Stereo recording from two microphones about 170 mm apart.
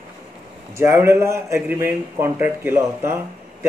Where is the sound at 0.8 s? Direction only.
15° right (ahead or behind).